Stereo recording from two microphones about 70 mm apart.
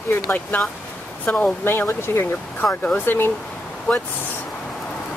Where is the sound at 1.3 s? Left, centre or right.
Left.